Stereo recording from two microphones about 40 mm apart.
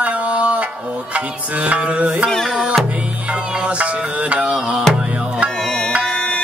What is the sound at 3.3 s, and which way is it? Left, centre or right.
Music, right.